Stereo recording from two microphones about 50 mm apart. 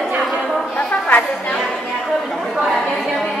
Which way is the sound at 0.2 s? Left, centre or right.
Centre.